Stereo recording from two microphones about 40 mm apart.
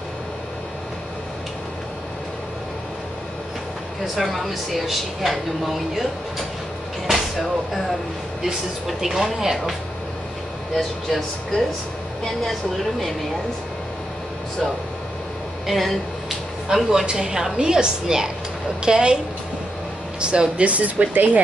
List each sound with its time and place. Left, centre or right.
4.1 s speech: centre
7.1 s vehicle: centre
8.8 s speech: centre
10.8 s speech: centre
15.6 s speech: centre
16.6 s a woman's voice: centre
20.2 s speech: right